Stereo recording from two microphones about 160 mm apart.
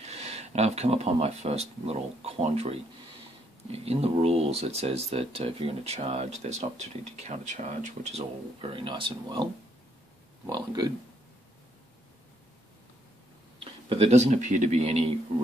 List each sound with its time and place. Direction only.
0.0 s speech: 45° right (ahead or behind); by 10.9 s 25° right (ahead or behind)
13.8 s a man's voice: 40° right (ahead or behind)